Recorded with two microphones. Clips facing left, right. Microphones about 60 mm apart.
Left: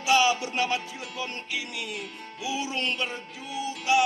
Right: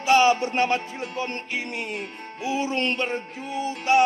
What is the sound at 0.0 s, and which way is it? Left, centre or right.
Music, right.